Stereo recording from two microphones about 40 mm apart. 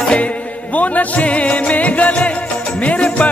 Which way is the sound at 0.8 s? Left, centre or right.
Left.